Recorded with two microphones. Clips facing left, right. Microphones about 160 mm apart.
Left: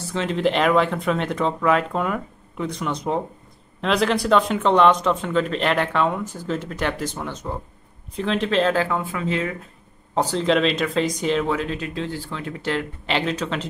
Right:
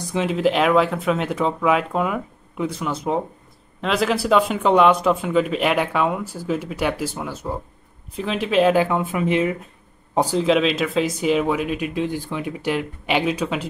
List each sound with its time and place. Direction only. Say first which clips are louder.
0.0 s speech: right 2 dB; 10° right (ahead or behind)